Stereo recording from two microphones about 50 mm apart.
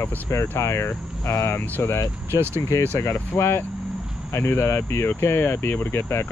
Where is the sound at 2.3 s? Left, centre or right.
Right.